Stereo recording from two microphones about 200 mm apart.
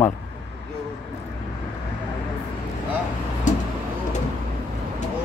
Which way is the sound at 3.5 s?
35° left (ahead or behind).